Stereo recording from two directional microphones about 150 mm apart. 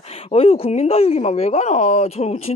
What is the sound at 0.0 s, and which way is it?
Speech, 40° left (ahead or behind).